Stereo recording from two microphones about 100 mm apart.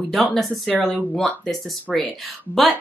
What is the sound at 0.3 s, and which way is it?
Speech, centre (ahead or behind).